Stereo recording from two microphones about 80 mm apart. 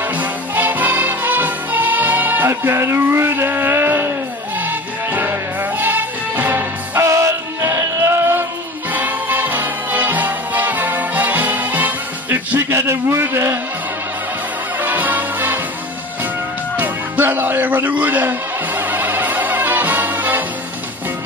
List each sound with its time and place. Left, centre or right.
0.2 s music: right
14.8 s music: right
16.7 s music: right